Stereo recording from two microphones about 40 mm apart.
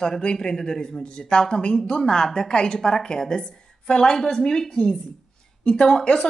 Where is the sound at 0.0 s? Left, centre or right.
Centre.